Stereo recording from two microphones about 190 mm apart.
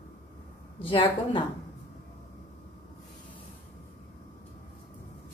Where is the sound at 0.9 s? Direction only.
25° left (ahead or behind).